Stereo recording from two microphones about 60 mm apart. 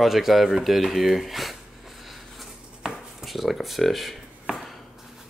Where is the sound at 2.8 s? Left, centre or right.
Centre.